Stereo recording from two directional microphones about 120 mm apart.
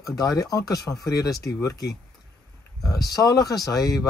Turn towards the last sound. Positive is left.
turn(degrees=30)  # may be behind; listen again after turning